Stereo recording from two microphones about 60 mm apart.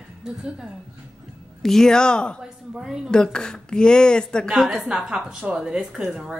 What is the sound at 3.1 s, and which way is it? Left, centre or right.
Speech, centre.